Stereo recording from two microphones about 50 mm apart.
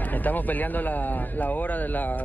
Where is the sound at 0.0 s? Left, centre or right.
Left.